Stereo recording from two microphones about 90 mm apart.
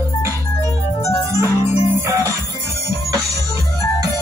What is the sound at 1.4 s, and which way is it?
Music, 30° right (ahead or behind).